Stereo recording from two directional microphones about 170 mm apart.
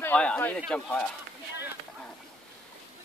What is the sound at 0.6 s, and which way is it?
Speech, 5° left (ahead or behind).